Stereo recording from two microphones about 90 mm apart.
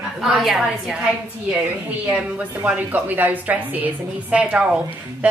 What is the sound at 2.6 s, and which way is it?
A woman's voice, 20° right (ahead or behind).